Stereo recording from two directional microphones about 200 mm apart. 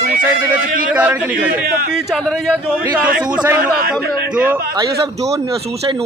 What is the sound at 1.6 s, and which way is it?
Speech, 45° right (ahead or behind).